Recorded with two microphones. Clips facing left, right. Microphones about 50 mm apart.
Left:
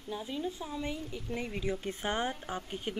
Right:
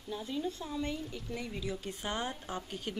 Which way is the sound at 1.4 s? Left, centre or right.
Left.